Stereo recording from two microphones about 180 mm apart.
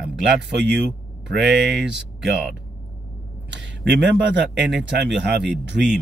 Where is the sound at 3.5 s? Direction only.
75° right (ahead or behind).